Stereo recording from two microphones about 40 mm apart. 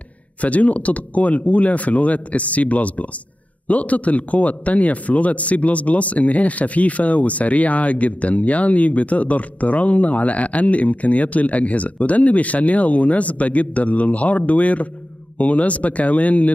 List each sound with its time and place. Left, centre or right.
0.4 s speech: left